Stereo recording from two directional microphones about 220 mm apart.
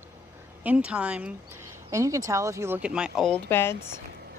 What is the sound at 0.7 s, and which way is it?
A woman's voice, 5° right (ahead or behind).